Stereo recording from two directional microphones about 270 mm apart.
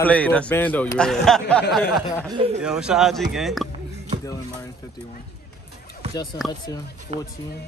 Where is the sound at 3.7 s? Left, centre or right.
Right.